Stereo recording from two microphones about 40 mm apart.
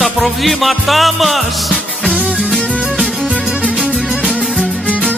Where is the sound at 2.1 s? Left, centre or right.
Right.